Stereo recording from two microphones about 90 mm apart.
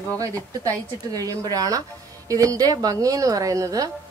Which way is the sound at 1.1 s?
45° right (ahead or behind).